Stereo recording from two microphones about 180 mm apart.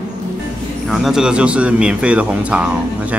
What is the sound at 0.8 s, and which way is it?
Speech, centre (ahead or behind).